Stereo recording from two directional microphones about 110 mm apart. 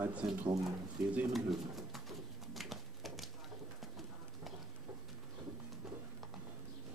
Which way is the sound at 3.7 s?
Centre (ahead or behind).